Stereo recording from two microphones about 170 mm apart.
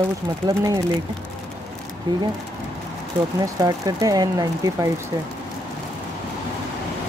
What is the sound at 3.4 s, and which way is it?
Speech, 20° right (ahead or behind).